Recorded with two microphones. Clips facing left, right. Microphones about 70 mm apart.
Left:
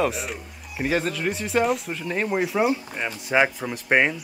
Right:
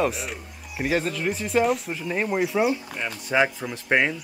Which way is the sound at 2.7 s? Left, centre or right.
Centre.